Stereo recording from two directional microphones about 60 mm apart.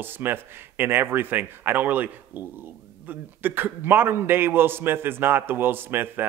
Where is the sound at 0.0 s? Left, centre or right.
Right.